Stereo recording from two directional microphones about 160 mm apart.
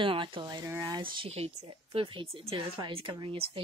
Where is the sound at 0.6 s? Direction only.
20° right (ahead or behind).